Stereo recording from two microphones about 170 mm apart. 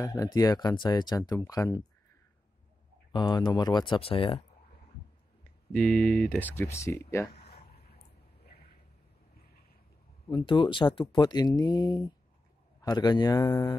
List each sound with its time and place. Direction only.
0.0 s speech: 20° left (ahead or behind)
3.1 s speech: 25° left (ahead or behind)
5.7 s speech: 5° left (ahead or behind)
7.3 s a sound: 65° left (ahead or behind)
10.3 s speech: 30° left (ahead or behind)